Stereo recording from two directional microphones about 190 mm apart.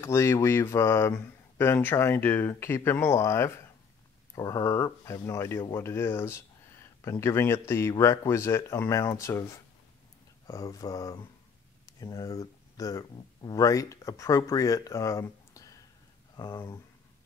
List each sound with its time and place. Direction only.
0.0 s speech: 15° left (ahead or behind)